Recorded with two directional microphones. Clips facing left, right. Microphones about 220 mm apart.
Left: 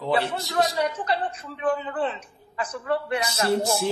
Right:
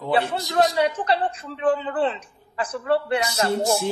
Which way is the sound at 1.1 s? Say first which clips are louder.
Right 4 dB; 30° right (ahead or behind).